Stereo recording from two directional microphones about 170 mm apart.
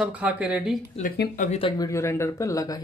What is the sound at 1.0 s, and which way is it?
Speech, 55° left (ahead or behind).